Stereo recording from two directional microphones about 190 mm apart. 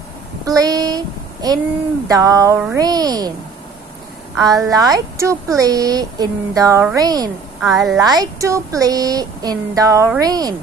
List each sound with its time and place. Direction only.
0.5 s child singing: 20° right (ahead or behind)
2.0 s a sound: 20° right (ahead or behind)
2.6 s speech: 15° right (ahead or behind)
4.4 s speech: 20° right (ahead or behind)